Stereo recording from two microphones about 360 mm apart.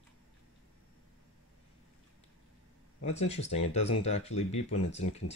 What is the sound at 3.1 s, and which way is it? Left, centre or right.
Speech, centre.